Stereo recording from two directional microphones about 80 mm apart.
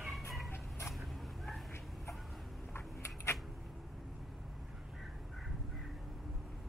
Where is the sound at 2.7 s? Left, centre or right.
Left.